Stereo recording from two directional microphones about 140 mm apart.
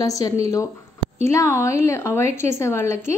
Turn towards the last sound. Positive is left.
turn(degrees=20)  # may be behind; listen again after turning